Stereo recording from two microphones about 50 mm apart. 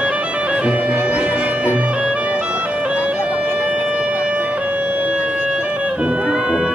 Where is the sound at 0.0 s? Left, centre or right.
Right.